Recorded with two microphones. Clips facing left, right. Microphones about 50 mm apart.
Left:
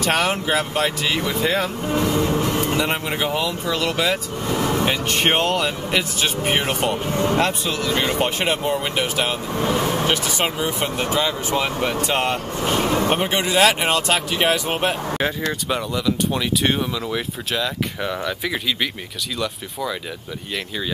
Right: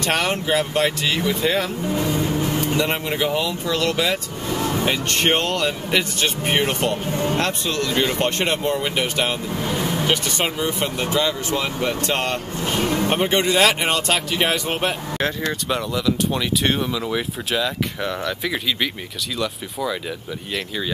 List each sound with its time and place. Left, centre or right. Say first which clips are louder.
0.0 s speech: left 1 dB; centre
2.0 s vehicle: left 3 dB; left
2.6 s speech: even; centre
12.8 s vehicle: right 1 dB; left
13.1 s speech: right 1 dB; centre